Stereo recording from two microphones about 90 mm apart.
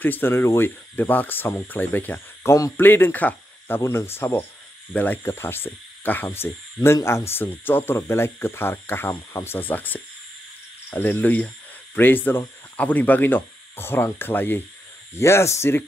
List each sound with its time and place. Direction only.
0.0 s speech: 20° left (ahead or behind)